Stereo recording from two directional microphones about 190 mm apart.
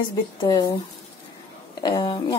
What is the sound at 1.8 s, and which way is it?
Speech, 25° left (ahead or behind).